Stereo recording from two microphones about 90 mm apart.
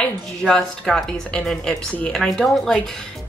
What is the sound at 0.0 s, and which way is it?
A woman's voice, 10° left (ahead or behind).